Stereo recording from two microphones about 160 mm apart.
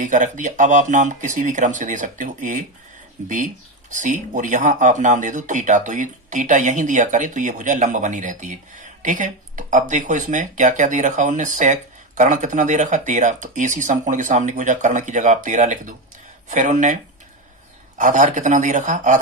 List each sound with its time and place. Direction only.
0.0 s speech: 50° right (ahead or behind)